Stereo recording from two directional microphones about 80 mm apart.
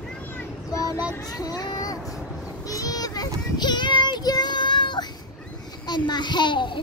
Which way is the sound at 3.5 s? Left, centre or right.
Left.